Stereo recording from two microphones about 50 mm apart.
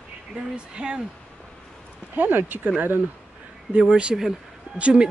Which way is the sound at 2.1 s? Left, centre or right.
Right.